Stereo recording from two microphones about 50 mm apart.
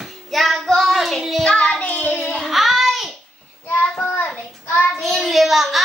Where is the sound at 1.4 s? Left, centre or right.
Centre.